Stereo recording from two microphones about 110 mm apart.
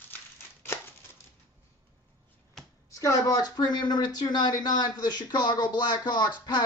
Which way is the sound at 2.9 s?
30° left (ahead or behind).